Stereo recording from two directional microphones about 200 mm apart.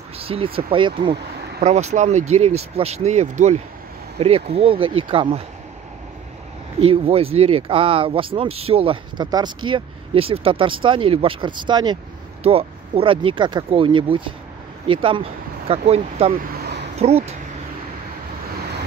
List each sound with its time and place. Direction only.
0.2 s speech: 30° right (ahead or behind)
1.6 s speech: 35° right (ahead or behind)
6.8 s speech: 30° right (ahead or behind)
16.5 s a sound: 55° right (ahead or behind)
17.0 s speech: 30° right (ahead or behind)